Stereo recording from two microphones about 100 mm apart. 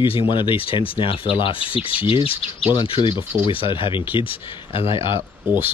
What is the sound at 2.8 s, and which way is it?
Speech, 55° left (ahead or behind).